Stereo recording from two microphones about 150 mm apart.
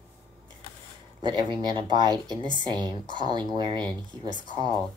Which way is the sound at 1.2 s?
30° right (ahead or behind).